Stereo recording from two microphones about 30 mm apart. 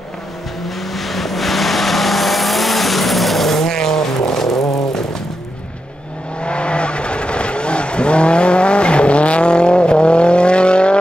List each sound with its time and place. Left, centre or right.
0.9 s vehicle: centre
6.4 s vehicle: left